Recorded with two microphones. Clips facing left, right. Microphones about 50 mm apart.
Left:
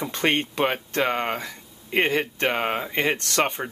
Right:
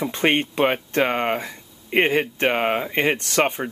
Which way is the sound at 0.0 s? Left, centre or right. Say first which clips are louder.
Right 3 dB; centre.